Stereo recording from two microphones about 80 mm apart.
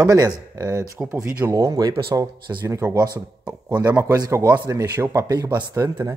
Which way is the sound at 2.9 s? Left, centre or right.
Right.